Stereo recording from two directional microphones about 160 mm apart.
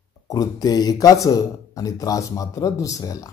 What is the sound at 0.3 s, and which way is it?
Speech, 25° left (ahead or behind).